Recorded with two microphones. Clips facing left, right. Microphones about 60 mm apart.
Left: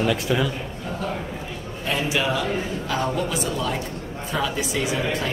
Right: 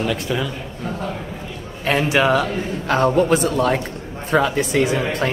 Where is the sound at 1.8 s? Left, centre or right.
Right.